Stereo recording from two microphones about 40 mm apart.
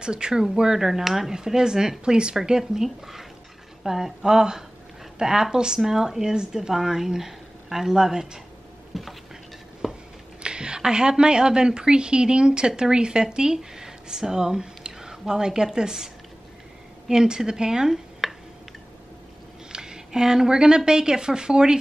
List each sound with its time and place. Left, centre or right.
0.0 s speech: right
8.9 s a sound: centre
9.8 s a sound: centre
10.4 s a woman's voice: right
17.1 s speech: centre
18.2 s tick-tock: centre
19.7 s a woman's voice: centre